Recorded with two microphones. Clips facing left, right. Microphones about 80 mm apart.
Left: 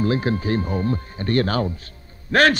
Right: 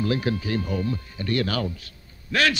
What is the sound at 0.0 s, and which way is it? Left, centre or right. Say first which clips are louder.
A man's voice: left 4 dB; left.